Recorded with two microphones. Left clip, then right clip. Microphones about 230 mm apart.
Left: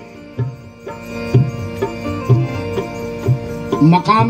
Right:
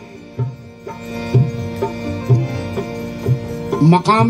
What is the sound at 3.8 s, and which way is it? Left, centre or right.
Music, right.